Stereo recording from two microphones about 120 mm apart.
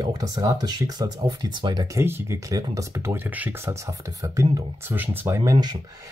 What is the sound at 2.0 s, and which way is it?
Speech, 20° right (ahead or behind).